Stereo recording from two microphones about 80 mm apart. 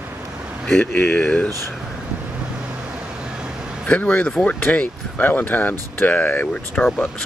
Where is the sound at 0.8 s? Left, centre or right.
Left.